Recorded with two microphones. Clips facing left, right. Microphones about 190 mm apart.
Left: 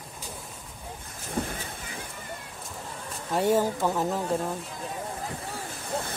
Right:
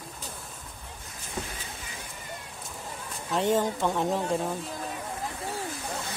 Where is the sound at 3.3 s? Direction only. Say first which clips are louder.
Left 2 dB; 10° left (ahead or behind).